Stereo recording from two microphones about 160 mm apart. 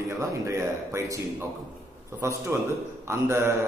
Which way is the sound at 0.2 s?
20° right (ahead or behind).